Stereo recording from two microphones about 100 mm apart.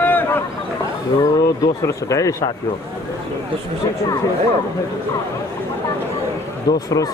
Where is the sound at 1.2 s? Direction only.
35° left (ahead or behind).